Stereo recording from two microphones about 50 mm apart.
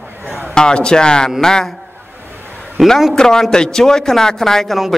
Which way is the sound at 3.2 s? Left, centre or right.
Centre.